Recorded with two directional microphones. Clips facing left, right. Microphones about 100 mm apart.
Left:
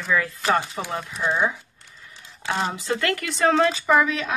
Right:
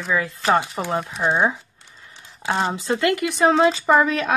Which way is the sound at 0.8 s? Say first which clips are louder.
Right 5 dB; 40° right (ahead or behind).